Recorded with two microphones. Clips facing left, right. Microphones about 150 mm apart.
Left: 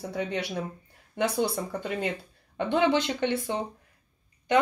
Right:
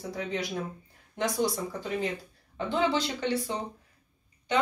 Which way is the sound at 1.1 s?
65° left (ahead or behind).